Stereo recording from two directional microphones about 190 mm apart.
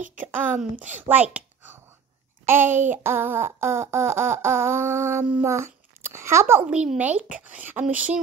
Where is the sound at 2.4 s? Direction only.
10° right (ahead or behind).